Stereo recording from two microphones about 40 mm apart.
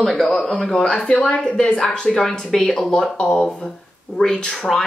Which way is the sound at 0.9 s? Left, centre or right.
Left.